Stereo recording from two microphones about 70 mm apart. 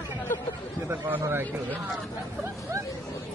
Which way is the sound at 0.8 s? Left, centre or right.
Right.